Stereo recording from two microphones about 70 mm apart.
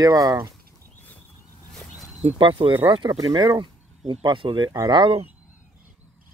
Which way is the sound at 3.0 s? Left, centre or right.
Right.